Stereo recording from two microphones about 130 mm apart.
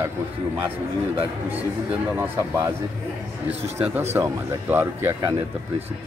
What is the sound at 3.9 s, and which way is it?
Speech, 20° right (ahead or behind).